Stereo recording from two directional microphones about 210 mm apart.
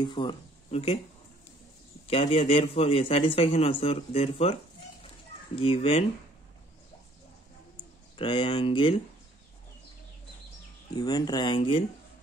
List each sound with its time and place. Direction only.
0.0 s speech: 20° left (ahead or behind)
2.0 s a man's voice: 25° left (ahead or behind)
5.6 s a man's voice: 25° left (ahead or behind)
8.2 s a man's voice: 25° left (ahead or behind)
11.0 s a man's voice: 20° left (ahead or behind)